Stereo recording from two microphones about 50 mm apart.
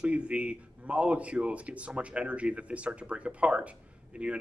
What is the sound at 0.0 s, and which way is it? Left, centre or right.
Speech, right.